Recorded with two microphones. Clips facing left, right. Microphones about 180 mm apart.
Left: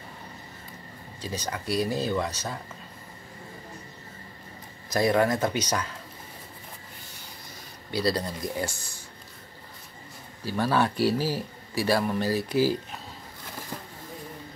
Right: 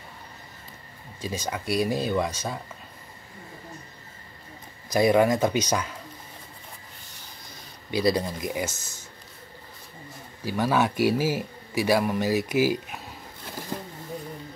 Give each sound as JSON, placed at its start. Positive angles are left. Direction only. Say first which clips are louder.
{"t": 1.2, "sound": "speech", "louder": "right 2 dB", "side_deg": -10}
{"t": 4.8, "sound": "speech", "louder": "right 3 dB", "side_deg": -15}
{"t": 7.9, "sound": "speech", "louder": "right 3 dB", "side_deg": -15}
{"t": 10.4, "sound": "speech", "louder": "right 1 dB", "side_deg": -10}